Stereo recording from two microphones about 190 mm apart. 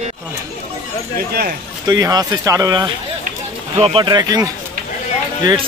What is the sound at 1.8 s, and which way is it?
Speech, 20° right (ahead or behind).